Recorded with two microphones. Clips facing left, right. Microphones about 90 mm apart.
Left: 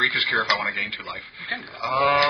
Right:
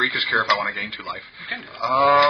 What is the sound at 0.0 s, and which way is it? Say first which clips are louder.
Speech: right 2 dB; 20° right (ahead or behind).